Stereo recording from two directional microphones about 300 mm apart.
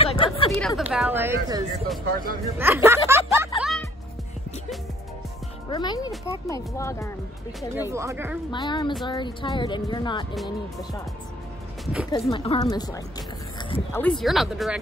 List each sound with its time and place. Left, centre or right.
0.0 s a sound: centre
0.5 s speech: centre
2.5 s music: centre
5.7 s speech: centre
7.9 s speech: centre
8.5 s speech: centre
11.8 s music: centre
12.1 s speech: centre
14.0 s speech: centre